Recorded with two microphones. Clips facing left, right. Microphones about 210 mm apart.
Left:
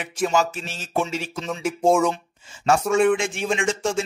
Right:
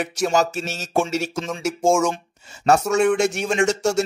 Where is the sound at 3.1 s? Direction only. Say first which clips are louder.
Right 3 dB; 40° right (ahead or behind).